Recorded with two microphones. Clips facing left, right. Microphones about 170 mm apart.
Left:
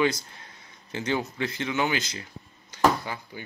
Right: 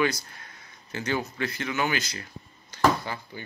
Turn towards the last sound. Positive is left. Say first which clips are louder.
# right 1 dB
turn(degrees=15)  # may be behind; listen again after turning